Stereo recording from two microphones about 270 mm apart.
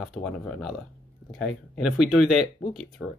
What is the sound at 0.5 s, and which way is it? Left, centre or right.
Speech, centre.